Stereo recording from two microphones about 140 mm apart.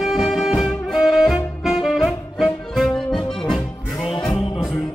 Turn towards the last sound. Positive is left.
turn(degrees=0)  # may be behind; listen again after turning